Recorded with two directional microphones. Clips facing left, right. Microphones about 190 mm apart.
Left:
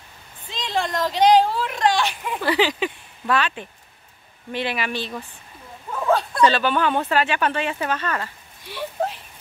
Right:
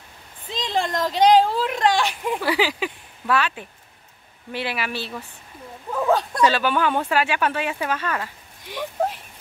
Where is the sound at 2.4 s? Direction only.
10° right (ahead or behind).